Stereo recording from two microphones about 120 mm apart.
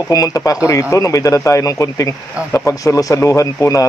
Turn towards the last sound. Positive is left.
turn(degrees=25)  # may be behind; listen again after turning